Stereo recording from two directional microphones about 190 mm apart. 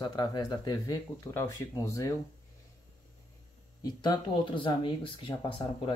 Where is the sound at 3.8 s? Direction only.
20° left (ahead or behind).